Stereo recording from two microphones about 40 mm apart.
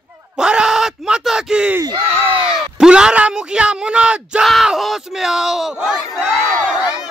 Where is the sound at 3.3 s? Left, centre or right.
Right.